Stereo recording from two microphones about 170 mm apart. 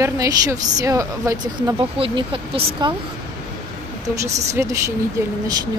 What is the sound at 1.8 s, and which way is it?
Speech, 30° right (ahead or behind).